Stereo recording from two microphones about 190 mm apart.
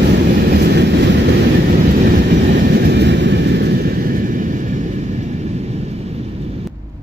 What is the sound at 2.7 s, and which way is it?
Vehicle, 60° right (ahead or behind).